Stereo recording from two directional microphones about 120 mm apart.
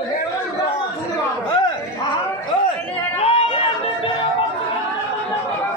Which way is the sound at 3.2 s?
55° left (ahead or behind).